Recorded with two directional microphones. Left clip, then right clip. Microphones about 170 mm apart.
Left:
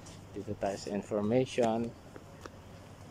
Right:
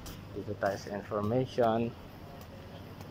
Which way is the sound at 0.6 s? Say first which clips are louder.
Right 2 dB; 25° left (ahead or behind).